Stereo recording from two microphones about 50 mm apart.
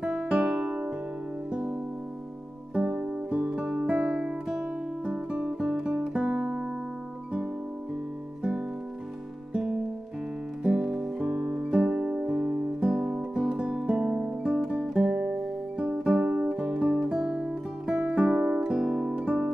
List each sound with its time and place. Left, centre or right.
0.0 s music: centre
0.7 s music: right
3.0 s guitar: right
9.5 s music: centre; by 12.7 s right
12.8 s music: centre
14.6 s music: right
15.0 s guitar: centre
16.0 s music: right
16.9 s guitar: centre; by 18.7 s right
18.7 s music: centre